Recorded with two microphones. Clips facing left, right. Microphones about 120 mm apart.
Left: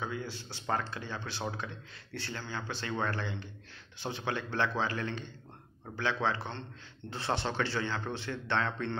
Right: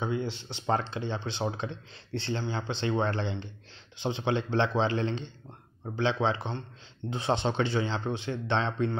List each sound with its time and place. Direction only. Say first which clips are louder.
0.0 s speech: right 6 dB; 25° right (ahead or behind)